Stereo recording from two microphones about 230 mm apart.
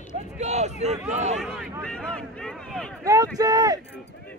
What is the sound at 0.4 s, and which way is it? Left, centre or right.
Speech, right.